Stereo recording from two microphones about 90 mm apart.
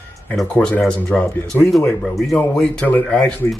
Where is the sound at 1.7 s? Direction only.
Centre (ahead or behind).